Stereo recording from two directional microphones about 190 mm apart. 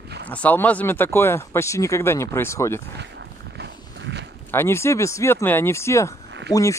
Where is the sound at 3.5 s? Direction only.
65° right (ahead or behind).